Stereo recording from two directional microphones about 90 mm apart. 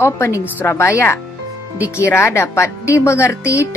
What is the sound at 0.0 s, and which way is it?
A woman's voice, 30° left (ahead or behind).